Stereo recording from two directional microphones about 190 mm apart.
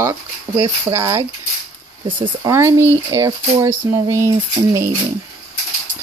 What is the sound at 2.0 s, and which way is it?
Speech, 25° right (ahead or behind).